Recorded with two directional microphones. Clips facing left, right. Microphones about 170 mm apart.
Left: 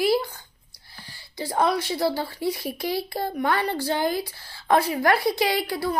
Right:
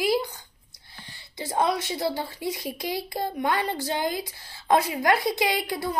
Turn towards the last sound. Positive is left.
turn(degrees=-20)  # may be behind; listen again after turning